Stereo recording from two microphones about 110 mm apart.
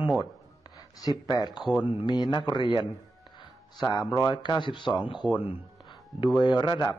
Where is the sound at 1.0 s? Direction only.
35° left (ahead or behind).